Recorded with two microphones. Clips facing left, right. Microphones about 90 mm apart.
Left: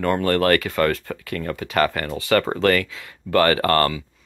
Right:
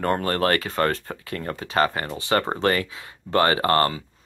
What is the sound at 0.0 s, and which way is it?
Speech, 35° right (ahead or behind).